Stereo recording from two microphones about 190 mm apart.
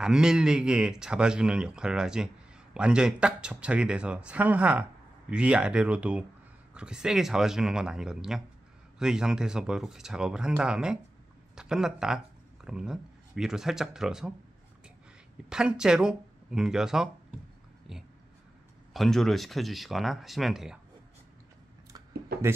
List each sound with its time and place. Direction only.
0.0 s speech: 5° right (ahead or behind)
15.5 s speech: 5° right (ahead or behind)
18.9 s speech: centre (ahead or behind)
22.3 s a sound: 55° right (ahead or behind)